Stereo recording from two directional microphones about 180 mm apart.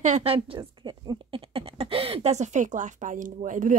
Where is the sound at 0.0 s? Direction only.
35° right (ahead or behind).